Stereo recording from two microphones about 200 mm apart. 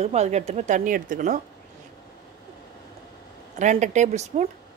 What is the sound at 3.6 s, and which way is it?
Speech, 35° right (ahead or behind).